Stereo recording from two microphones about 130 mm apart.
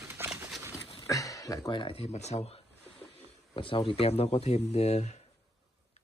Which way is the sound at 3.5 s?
40° left (ahead or behind).